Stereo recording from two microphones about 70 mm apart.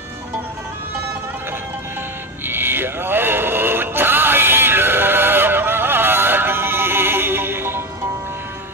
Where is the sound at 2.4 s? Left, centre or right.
Right.